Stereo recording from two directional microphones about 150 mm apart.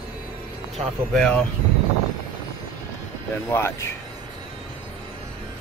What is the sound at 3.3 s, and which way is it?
Speech, 15° left (ahead or behind).